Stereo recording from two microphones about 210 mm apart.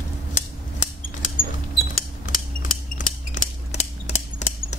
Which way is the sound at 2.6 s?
40° left (ahead or behind).